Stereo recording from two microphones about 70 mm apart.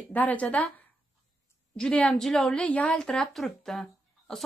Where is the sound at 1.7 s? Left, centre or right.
Centre.